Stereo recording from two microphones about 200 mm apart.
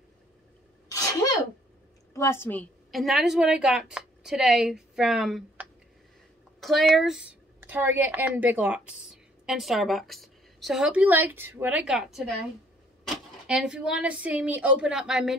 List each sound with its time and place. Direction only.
0.8 s sneeze: 15° left (ahead or behind)
2.1 s a woman's voice: 10° left (ahead or behind)
13.5 s a woman's voice: 5° right (ahead or behind)